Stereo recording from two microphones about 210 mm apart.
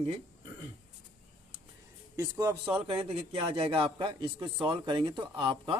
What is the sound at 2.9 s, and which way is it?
Speech, 25° right (ahead or behind).